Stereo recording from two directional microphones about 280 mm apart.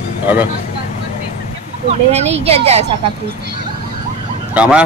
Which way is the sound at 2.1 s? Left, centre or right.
Right.